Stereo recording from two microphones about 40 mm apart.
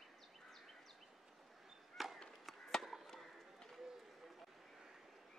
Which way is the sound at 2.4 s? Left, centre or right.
Centre.